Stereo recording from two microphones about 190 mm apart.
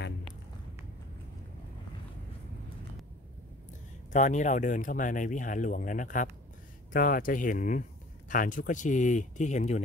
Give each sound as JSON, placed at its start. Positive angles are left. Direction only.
{"t": 4.1, "sound": "speech", "side_deg": 40}